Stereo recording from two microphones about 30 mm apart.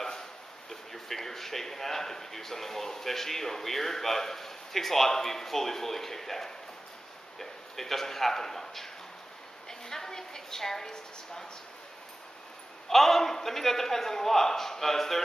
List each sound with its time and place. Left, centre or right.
0.7 s a man's voice: centre
9.7 s a sound: centre
12.8 s a man's voice: centre